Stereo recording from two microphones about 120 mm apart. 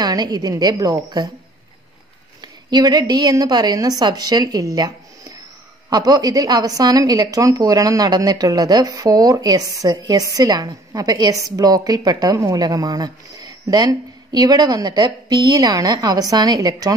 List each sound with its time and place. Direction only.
0.0 s a woman's voice: 35° right (ahead or behind)
2.4 s a woman's voice: 35° right (ahead or behind)